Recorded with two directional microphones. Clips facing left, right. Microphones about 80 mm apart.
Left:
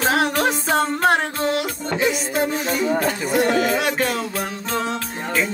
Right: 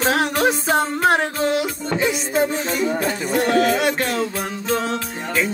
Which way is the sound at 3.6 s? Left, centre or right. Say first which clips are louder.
Right 2 dB; centre.